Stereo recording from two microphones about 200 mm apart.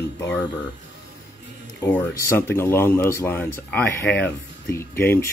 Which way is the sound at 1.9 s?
10° left (ahead or behind).